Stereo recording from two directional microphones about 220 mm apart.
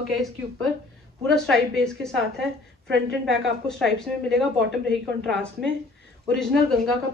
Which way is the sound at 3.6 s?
Centre (ahead or behind).